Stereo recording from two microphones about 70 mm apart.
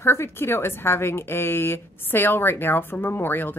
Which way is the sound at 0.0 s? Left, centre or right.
Left.